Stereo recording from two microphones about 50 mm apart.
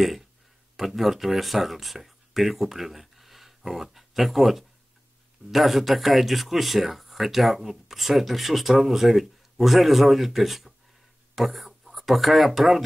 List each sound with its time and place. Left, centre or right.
0.7 s speech: centre